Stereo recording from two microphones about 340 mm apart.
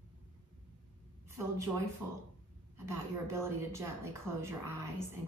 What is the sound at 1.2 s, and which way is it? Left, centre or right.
Speech, centre.